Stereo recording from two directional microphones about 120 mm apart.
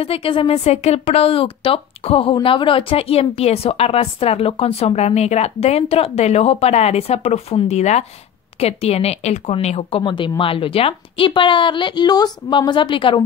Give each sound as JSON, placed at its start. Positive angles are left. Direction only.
{"t": 0.0, "sound": "a woman's voice", "side_deg": 55}